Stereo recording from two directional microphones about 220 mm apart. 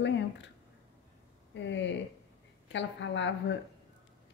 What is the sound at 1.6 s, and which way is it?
A woman's voice, 55° left (ahead or behind).